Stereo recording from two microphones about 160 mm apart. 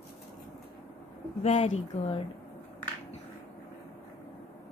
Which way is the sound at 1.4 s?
45° left (ahead or behind).